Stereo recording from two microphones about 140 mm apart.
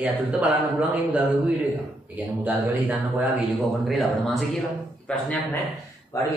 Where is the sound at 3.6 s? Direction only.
Centre (ahead or behind).